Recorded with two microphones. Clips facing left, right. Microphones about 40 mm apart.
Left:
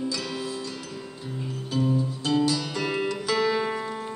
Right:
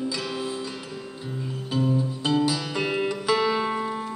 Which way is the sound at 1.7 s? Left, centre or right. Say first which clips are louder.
Right 1 dB; centre.